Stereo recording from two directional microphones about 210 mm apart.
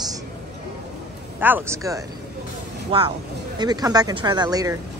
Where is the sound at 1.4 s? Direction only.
10° right (ahead or behind).